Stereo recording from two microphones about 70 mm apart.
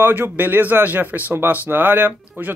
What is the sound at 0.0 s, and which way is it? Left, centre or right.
Speech, right.